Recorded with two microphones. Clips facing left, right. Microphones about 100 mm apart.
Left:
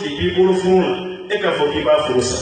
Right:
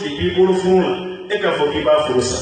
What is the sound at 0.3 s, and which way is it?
Mantra, centre (ahead or behind).